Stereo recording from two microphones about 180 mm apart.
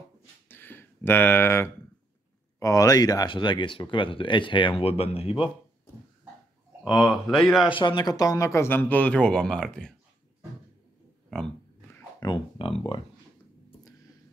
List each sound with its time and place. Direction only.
0.5 s a sound: 10° left (ahead or behind)
2.6 s speech: 20° left (ahead or behind)
6.8 s speech: centre (ahead or behind)
7.7 s speech: 25° left (ahead or behind); by 9.9 s 5° left (ahead or behind)
11.2 s a sound: 5° left (ahead or behind)
12.2 s speech: 25° left (ahead or behind)